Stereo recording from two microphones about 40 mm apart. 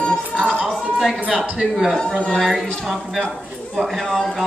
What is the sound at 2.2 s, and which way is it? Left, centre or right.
Speech, centre.